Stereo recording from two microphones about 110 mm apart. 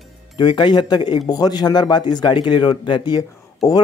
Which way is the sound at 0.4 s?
45° left (ahead or behind).